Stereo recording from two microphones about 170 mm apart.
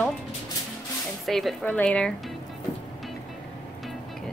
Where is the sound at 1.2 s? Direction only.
Centre (ahead or behind).